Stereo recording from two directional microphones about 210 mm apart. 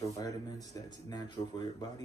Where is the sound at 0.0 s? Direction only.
15° left (ahead or behind).